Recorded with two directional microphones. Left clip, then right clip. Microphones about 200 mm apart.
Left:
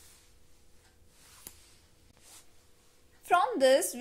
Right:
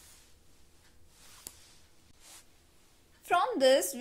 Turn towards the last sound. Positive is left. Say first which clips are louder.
# left 1 dB
turn(degrees=0)  # may be behind; listen again after turning